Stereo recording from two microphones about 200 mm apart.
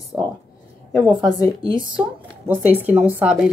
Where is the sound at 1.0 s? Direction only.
25° right (ahead or behind).